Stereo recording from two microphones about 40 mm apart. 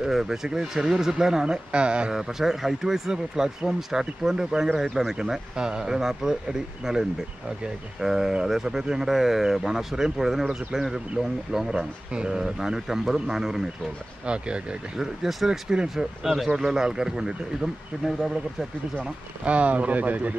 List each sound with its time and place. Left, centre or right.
0.0 s speech: centre
1.4 s speech: right
2.1 s speech: centre
12.1 s speech: right
12.4 s speech: centre
14.2 s speech: right
15.0 s speech: centre
18.0 s speech: centre
19.4 s speech: right